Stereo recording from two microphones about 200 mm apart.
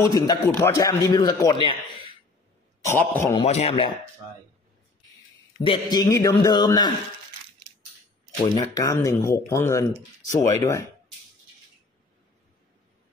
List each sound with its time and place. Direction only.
0.0 s a man's voice: 20° left (ahead or behind)
2.8 s speech: 10° left (ahead or behind)
3.3 s speech: 30° left (ahead or behind)
5.6 s a man's voice: 25° left (ahead or behind)
8.5 s speech: 15° left (ahead or behind)